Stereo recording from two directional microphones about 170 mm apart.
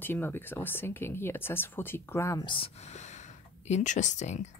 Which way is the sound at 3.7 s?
45° left (ahead or behind).